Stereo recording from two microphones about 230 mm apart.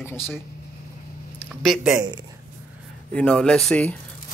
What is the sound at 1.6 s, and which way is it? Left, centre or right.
Speech, centre.